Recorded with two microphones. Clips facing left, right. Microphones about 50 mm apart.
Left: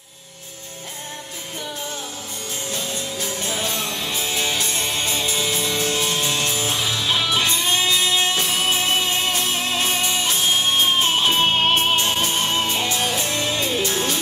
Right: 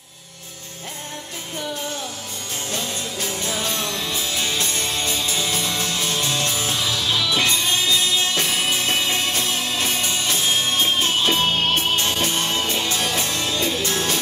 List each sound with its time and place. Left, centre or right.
3.8 s music: left